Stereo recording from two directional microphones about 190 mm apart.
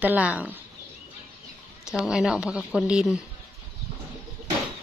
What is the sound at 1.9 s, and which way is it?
Speech, 5° right (ahead or behind).